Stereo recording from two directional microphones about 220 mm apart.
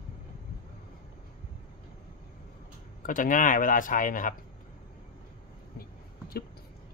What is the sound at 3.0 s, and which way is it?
Speech, 35° left (ahead or behind).